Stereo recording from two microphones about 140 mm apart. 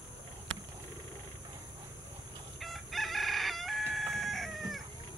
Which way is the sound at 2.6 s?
Centre (ahead or behind).